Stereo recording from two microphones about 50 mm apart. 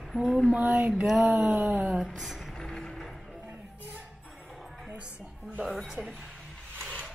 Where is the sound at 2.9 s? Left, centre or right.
Centre.